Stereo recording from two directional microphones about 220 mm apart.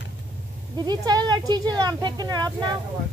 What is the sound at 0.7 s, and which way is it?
Speech, 20° right (ahead or behind).